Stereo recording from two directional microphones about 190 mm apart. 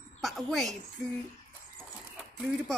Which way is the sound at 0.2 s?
Centre (ahead or behind).